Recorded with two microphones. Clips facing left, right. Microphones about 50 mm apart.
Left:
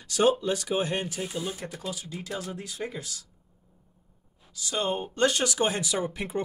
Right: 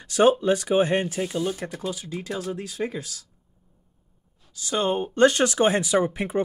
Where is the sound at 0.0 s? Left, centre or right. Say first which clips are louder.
Right 5 dB; right.